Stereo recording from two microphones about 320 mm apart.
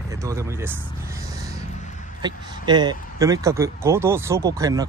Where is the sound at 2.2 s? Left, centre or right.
Centre.